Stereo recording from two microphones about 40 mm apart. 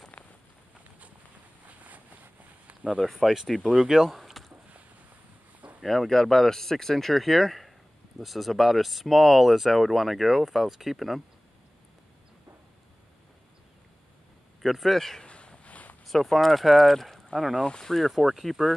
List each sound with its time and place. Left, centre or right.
0.1 s rain on surface: left
1.7 s a sound: right
3.0 s speech: centre
3.7 s speech: centre
5.9 s speech: centre
14.6 s speech: centre
15.2 s a sound: left
16.1 s speech: centre
17.6 s speech: centre
17.9 s speech: centre